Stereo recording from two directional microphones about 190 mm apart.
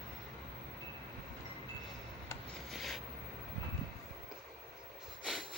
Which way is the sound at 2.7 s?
Centre (ahead or behind).